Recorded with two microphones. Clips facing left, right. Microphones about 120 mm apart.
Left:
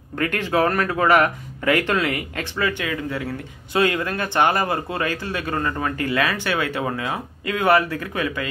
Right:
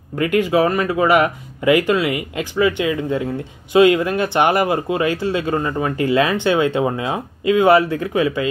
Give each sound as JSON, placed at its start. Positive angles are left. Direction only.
{"t": 0.2, "sound": "speech", "side_deg": -10}